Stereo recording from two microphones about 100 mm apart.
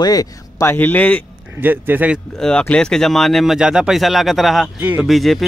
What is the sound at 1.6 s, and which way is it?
Speech, 20° right (ahead or behind).